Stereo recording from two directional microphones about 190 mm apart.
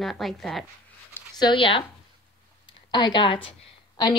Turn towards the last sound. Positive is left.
turn(degrees=25)  # may be behind; listen again after turning